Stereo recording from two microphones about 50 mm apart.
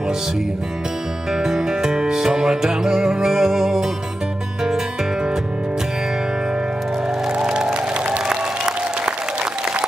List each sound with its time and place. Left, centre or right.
1.3 s music: centre
7.2 s music: centre
8.3 s applause: centre